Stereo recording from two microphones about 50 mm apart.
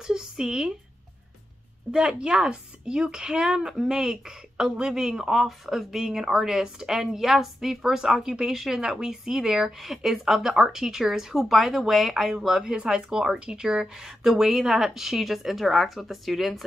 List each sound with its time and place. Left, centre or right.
0.0 s speech: centre
1.9 s a woman's voice: centre